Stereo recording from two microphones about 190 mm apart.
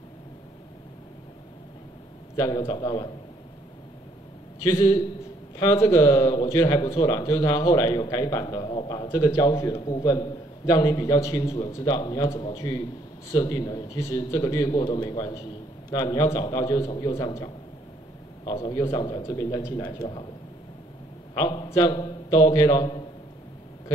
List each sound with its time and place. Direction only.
2.3 s a man's voice: 20° left (ahead or behind)
4.6 s a man's voice: 25° left (ahead or behind)
21.4 s a man's voice: 25° left (ahead or behind)